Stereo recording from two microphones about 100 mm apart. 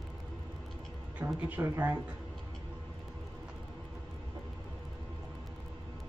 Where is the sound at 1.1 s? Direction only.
15° right (ahead or behind).